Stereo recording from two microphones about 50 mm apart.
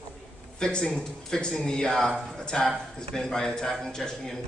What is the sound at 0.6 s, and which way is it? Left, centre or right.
A man's voice, centre.